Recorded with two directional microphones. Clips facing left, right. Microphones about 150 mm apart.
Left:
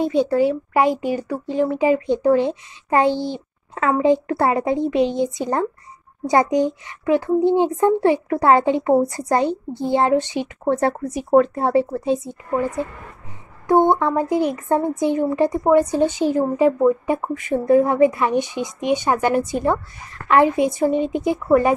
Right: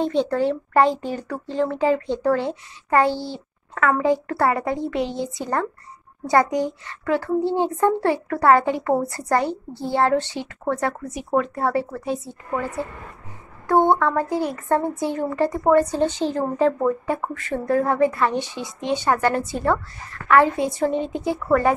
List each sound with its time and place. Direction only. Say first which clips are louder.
0.0 s speech: left 3 dB; 10° left (ahead or behind)
10.8 s speech: left 5 dB; 35° left (ahead or behind)
11.5 s speech: left 4 dB; 20° left (ahead or behind)